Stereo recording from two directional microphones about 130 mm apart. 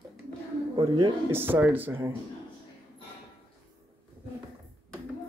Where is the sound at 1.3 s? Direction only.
15° right (ahead or behind).